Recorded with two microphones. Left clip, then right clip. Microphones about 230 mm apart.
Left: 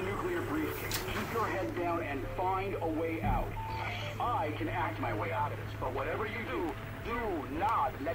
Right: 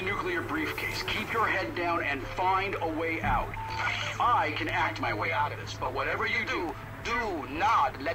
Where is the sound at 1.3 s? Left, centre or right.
Right.